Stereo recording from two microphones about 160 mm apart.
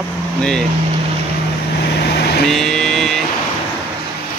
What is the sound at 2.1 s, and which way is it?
Vehicle, 90° left.